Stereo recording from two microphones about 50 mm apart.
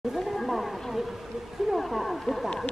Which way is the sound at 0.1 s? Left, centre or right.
Centre.